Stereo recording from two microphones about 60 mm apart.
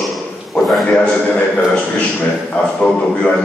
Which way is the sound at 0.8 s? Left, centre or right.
Centre.